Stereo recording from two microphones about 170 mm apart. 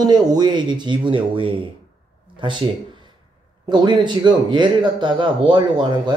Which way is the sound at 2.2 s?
30° right (ahead or behind).